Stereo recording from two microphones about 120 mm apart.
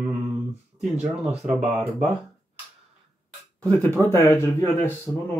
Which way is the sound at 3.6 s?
20° left (ahead or behind).